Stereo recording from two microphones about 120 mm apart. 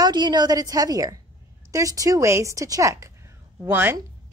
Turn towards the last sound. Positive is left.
turn(degrees=-20)  # may be behind; listen again after turning